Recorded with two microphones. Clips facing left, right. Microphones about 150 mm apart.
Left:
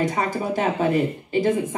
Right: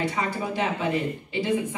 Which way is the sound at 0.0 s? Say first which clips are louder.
Left 4 dB; 45° left (ahead or behind).